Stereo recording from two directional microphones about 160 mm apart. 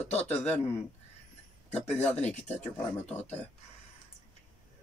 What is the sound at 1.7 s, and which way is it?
Speech, 45° left (ahead or behind).